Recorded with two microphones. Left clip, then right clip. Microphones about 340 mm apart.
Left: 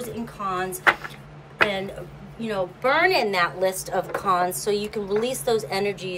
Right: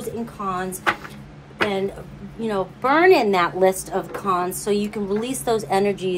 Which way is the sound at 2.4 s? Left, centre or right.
Centre.